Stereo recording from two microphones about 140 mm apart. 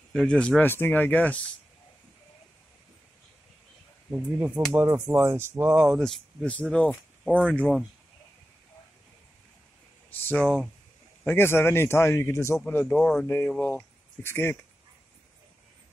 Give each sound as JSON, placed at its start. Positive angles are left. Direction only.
{"t": 0.1, "sound": "speech", "side_deg": 5}
{"t": 4.1, "sound": "speech", "side_deg": -10}
{"t": 5.9, "sound": "speech", "side_deg": 5}
{"t": 7.2, "sound": "speech", "side_deg": -10}
{"t": 10.4, "sound": "speech", "side_deg": -10}
{"t": 11.2, "sound": "speech", "side_deg": 15}